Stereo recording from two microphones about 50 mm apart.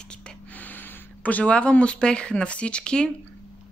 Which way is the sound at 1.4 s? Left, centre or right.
Left.